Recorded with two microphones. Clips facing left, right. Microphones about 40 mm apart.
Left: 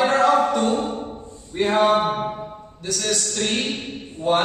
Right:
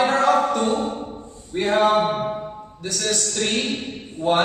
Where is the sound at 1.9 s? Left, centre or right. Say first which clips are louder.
Even; centre.